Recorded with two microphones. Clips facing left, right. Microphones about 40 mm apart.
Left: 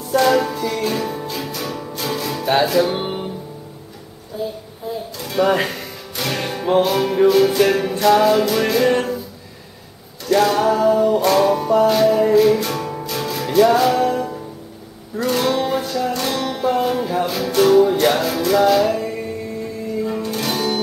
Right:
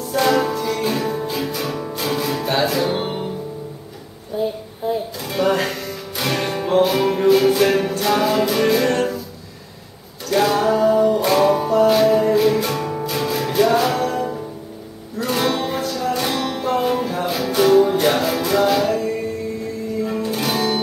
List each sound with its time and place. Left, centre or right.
0.1 s music: centre
2.4 s music: centre
4.4 s child singing: right
5.1 s music: centre
8.8 s music: centre
10.3 s music: centre
15.8 s music: centre
16.1 s music: centre
20.1 s music: centre